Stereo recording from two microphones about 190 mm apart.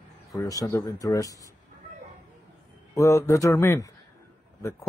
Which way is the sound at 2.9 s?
15° left (ahead or behind).